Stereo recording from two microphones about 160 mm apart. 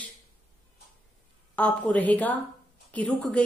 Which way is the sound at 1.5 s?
10° left (ahead or behind).